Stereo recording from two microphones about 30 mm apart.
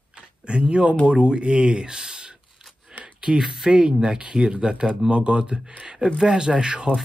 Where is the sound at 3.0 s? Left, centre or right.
Right.